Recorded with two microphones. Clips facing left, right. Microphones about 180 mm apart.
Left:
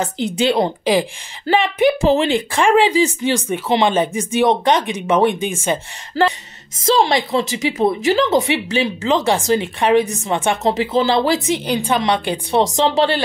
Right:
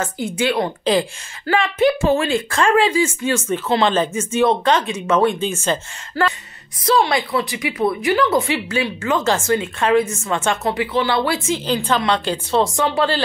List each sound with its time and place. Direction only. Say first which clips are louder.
0.0 s a woman's voice: left 3 dB; 20° left (ahead or behind)
11.6 s speech: left 1 dB; 15° left (ahead or behind)